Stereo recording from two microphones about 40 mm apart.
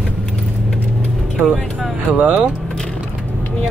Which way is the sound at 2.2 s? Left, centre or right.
Right.